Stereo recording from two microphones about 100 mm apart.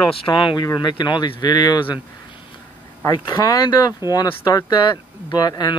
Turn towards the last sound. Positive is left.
turn(degrees=40)  # may be behind; listen again after turning